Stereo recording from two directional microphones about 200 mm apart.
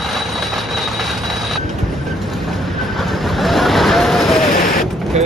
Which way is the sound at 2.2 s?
Centre (ahead or behind).